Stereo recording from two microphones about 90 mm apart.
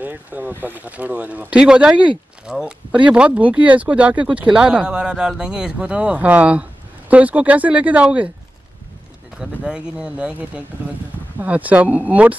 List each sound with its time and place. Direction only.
0.0 s speech: 20° right (ahead or behind)
9.4 s speech: 10° right (ahead or behind)